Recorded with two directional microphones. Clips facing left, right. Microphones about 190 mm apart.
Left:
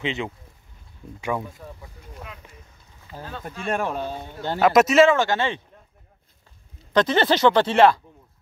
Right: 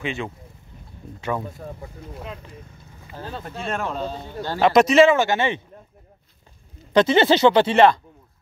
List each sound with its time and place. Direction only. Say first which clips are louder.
0.0 s speech: left 1 dB; 20° left (ahead or behind)
1.6 s speech: right 5 dB; 45° right (ahead or behind)
3.1 s speech: right 1 dB; 15° right (ahead or behind)
3.7 s a man's voice: left 1 dB; 15° left (ahead or behind)
4.6 s speech: right 1 dB; 5° left (ahead or behind)
5.2 s speech: right 2 dB; 15° right (ahead or behind)
6.9 s speech: right 3 dB; 10° right (ahead or behind)
7.2 s speech: right 2 dB; 25° right (ahead or behind)
7.5 s speech: right 1 dB; centre (ahead or behind)